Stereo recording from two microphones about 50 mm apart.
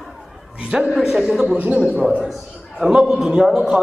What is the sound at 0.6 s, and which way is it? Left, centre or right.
Speech, centre.